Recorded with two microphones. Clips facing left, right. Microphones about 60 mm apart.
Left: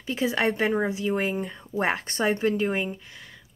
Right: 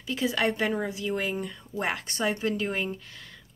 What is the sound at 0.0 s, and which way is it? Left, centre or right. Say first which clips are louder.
Speech: left 2 dB; left.